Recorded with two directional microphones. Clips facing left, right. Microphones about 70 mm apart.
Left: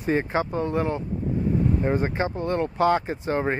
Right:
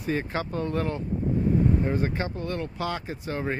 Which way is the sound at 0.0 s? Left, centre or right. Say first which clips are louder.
Left 5 dB; left.